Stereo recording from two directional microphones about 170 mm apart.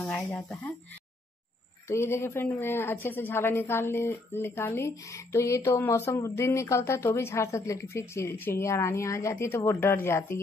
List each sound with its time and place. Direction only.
0.0 s speech: 10° left (ahead or behind)
1.9 s speech: 15° left (ahead or behind)